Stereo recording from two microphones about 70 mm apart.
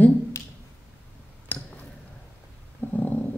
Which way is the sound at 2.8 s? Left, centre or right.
Left.